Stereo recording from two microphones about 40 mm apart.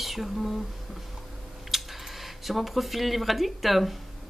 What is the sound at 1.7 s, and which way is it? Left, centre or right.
Speech, centre.